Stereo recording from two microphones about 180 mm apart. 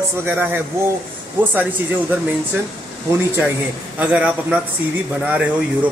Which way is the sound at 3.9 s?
5° right (ahead or behind).